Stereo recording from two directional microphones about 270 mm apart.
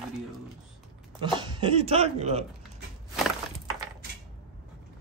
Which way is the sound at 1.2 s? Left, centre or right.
Centre.